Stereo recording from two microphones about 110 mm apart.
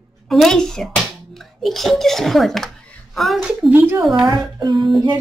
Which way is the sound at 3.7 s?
15° right (ahead or behind).